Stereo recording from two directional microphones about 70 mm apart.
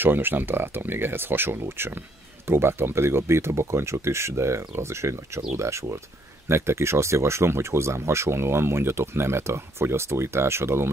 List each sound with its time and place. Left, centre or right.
0.0 s speech: right